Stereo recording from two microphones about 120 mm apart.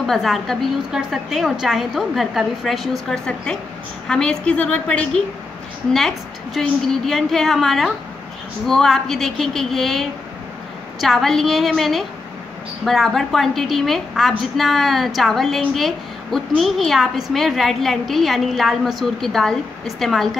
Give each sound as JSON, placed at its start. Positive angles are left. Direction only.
{"t": 0.0, "sound": "a woman's voice", "side_deg": 0}